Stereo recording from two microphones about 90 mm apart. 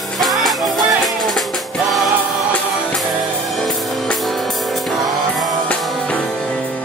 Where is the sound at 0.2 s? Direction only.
Centre (ahead or behind).